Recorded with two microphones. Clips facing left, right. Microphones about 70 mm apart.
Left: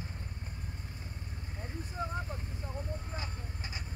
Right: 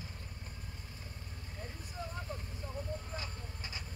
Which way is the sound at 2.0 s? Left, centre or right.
Left.